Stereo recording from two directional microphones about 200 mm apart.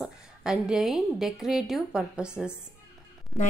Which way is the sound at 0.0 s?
5° right (ahead or behind).